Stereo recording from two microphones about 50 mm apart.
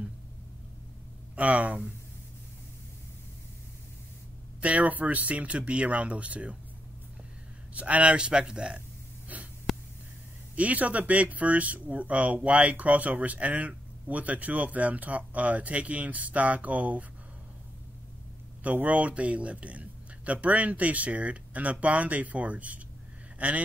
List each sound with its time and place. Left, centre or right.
1.3 s speech: right
4.6 s speech: right
7.7 s speech: right
9.3 s wheeze: right
9.7 s a sound: centre
10.5 s speech: right
18.6 s speech: right